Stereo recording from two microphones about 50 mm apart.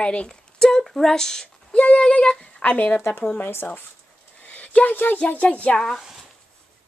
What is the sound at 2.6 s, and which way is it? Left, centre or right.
Speech, left.